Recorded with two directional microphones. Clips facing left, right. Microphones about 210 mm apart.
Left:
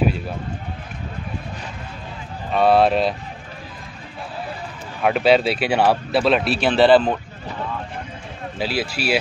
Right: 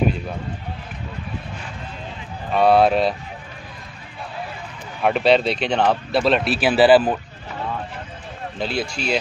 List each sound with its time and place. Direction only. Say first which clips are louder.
2.5 s speech: even; centre (ahead or behind)
5.0 s speech: left 1 dB; centre (ahead or behind)
8.5 s speech: left 1 dB; 5° left (ahead or behind)